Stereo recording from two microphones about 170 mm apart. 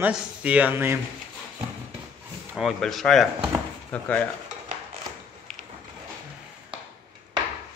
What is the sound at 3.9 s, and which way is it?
Stir, 10° left (ahead or behind).